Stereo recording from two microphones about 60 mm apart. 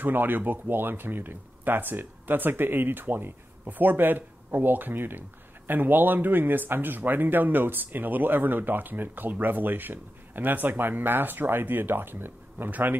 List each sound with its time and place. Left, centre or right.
0.0 s speech: right